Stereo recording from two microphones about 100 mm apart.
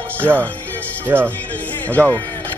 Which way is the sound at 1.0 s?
20° right (ahead or behind).